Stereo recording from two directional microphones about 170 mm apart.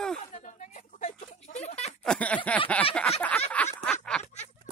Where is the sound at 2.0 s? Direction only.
10° left (ahead or behind).